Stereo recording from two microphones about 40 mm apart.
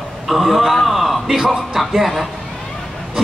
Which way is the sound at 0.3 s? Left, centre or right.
Centre.